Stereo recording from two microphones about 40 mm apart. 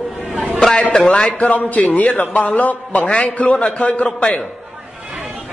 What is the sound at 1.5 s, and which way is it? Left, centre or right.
Speech, left.